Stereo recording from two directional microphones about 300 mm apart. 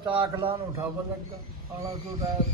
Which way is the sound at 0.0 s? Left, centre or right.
Centre.